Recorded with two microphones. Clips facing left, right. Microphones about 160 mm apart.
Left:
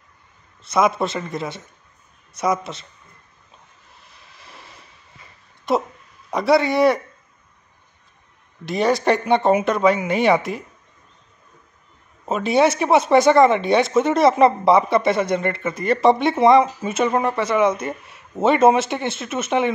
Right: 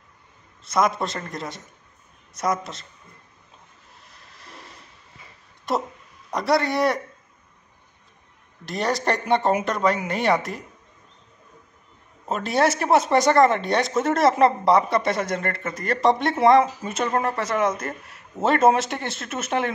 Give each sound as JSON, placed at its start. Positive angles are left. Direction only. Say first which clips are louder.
{"t": 0.7, "sound": "speech", "louder": "left 3 dB", "side_deg": 5}
{"t": 4.1, "sound": "vehicle", "louder": "even", "side_deg": 0}
{"t": 6.3, "sound": "speech", "louder": "left 5 dB", "side_deg": 0}
{"t": 8.6, "sound": "speech", "louder": "left 6 dB", "side_deg": 0}
{"t": 12.3, "sound": "speech", "louder": "left 4 dB", "side_deg": 0}
{"t": 17.1, "sound": "speech", "louder": "left 3 dB", "side_deg": 20}
{"t": 17.4, "sound": "speech", "louder": "left 5 dB", "side_deg": 0}